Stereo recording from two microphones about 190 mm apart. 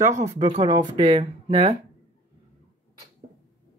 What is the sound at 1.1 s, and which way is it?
Speech, 35° right (ahead or behind).